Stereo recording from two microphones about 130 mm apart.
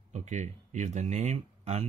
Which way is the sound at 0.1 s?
65° right (ahead or behind).